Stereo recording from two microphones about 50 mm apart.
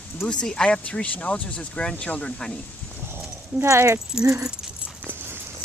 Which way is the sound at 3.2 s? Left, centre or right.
Right.